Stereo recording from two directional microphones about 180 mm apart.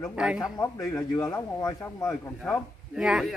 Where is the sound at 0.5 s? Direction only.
15° left (ahead or behind).